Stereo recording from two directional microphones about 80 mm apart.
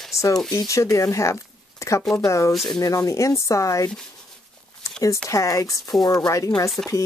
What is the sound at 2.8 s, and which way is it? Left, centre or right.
Speech, left.